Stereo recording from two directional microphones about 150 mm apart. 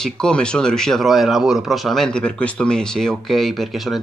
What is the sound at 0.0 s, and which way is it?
A man's voice, 5° left (ahead or behind).